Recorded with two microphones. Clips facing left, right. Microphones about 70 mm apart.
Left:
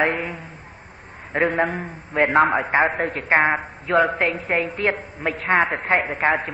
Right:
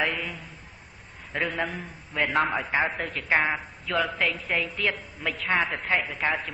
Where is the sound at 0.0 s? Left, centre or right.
Left.